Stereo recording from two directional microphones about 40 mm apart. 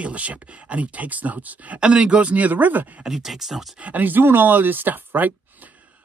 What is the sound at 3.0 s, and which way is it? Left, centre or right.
Speech, centre.